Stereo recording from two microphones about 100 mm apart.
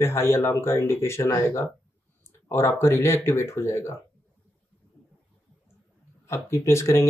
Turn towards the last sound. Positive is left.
turn(degrees=30)  # may be behind; listen again after turning